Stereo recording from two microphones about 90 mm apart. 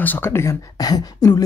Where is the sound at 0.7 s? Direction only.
45° left (ahead or behind).